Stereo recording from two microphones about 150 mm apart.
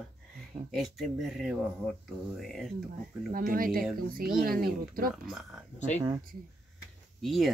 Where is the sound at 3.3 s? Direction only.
70° right (ahead or behind).